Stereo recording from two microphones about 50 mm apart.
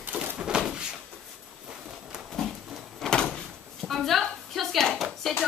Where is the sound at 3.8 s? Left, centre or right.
Centre.